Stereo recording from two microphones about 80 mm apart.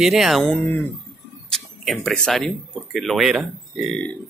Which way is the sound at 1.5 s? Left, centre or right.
Centre.